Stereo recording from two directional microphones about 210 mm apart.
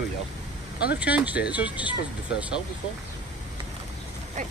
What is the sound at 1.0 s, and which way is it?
Speech, 5° right (ahead or behind).